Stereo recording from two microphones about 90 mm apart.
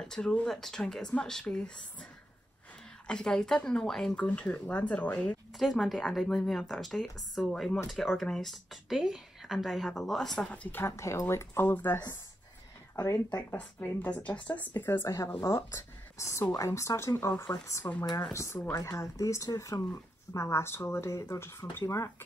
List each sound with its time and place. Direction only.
0.0 s speech: 5° left (ahead or behind)
3.1 s speech: 5° left (ahead or behind)
5.6 s speech: centre (ahead or behind)
10.4 s speech: 15° left (ahead or behind)
10.9 s speech: 35° left (ahead or behind)
12.9 s speech: 35° left (ahead or behind)
13.6 s speech: 20° left (ahead or behind)
15.0 s speech: 35° left (ahead or behind)